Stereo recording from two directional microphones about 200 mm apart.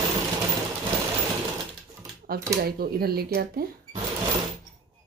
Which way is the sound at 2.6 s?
50° right (ahead or behind).